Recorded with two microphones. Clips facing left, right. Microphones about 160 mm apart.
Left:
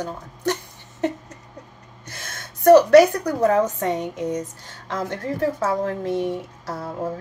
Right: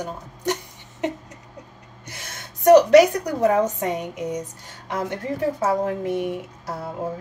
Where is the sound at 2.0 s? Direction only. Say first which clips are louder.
Left 1 dB; 15° right (ahead or behind).